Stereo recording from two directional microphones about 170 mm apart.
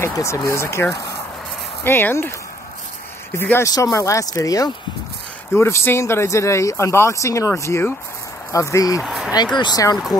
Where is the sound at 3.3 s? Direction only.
15° left (ahead or behind).